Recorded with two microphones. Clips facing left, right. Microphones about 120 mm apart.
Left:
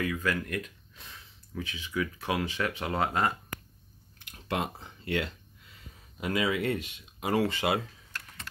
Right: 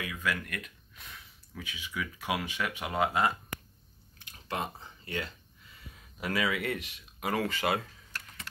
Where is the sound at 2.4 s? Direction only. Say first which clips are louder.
Left 3 dB; 15° right (ahead or behind).